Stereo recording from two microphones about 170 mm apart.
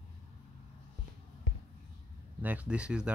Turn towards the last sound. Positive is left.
turn(degrees=-5)  # may be behind; listen again after turning